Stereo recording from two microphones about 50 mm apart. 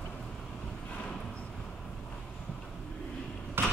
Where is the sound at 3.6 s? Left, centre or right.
Right.